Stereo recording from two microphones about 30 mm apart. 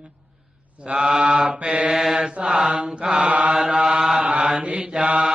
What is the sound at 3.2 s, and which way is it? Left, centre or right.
Mantra, right.